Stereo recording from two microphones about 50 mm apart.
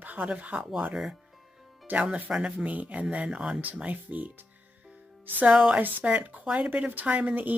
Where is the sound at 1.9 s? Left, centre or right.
Right.